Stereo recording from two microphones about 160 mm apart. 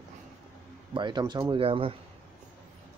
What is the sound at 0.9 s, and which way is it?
Speech, 30° right (ahead or behind).